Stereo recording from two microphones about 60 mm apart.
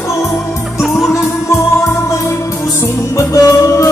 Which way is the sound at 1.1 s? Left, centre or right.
Left.